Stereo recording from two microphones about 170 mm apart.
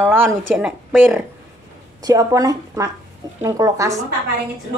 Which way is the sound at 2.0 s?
20° right (ahead or behind).